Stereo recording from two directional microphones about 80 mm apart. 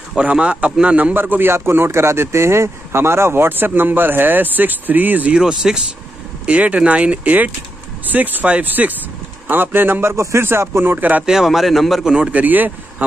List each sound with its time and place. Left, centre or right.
0.2 s a man's voice: centre
11.2 s speech: centre; by 12.7 s right